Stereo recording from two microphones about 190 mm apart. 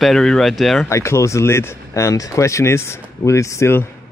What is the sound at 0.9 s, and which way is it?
Speech, 15° left (ahead or behind).